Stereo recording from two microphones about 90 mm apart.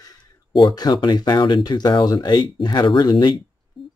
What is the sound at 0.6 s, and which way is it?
Speech, 45° left (ahead or behind).